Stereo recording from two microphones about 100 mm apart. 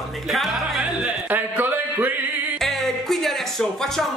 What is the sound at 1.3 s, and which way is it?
Music, 20° right (ahead or behind).